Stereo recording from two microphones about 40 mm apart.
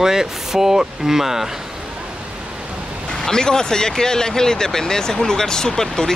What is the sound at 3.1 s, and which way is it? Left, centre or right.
Speech, centre.